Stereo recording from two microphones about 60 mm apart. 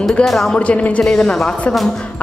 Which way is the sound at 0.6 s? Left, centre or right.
Left.